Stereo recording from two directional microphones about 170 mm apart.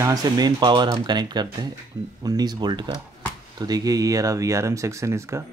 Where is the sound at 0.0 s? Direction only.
20° right (ahead or behind).